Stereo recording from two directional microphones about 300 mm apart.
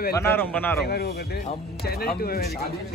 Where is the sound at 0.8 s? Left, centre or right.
Left.